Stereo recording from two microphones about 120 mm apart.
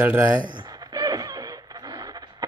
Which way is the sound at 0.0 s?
10° right (ahead or behind).